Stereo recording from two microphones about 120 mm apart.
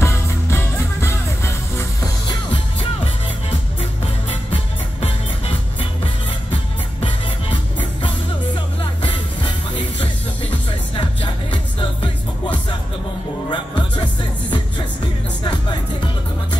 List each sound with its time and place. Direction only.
0.0 s music: 20° left (ahead or behind)
2.2 s music: 40° left (ahead or behind)
5.0 s music: 45° left (ahead or behind)
9.0 s music: 40° left (ahead or behind)
13.5 s music: 40° left (ahead or behind)